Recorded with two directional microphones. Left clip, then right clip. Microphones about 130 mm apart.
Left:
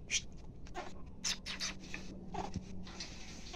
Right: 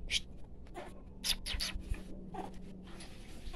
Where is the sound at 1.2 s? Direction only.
40° right (ahead or behind).